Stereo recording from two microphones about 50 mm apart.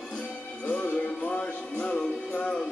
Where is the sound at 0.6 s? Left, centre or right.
Left.